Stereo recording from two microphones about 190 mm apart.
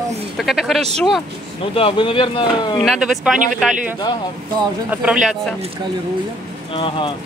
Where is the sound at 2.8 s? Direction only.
Centre (ahead or behind).